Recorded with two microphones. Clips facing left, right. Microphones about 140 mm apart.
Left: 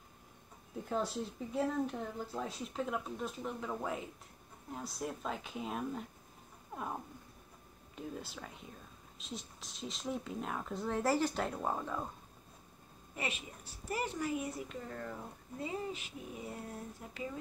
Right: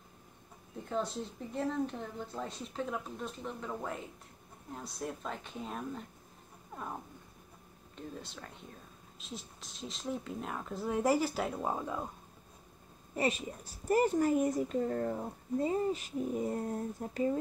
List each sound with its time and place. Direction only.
0.8 s speech: 5° left (ahead or behind)
6.7 s cat: 5° left (ahead or behind)
7.9 s speech: 5° left (ahead or behind)
11.0 s speech: 15° right (ahead or behind)
13.1 s a woman's voice: 40° right (ahead or behind)